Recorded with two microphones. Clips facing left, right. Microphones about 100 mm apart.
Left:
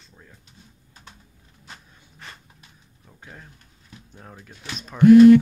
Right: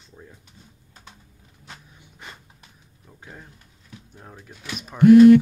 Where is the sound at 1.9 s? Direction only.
15° right (ahead or behind).